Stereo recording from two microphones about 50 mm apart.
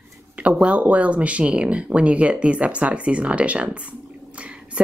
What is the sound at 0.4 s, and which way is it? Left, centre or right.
Speech, right.